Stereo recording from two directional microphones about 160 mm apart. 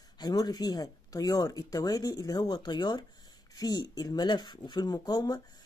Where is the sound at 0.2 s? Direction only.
25° left (ahead or behind).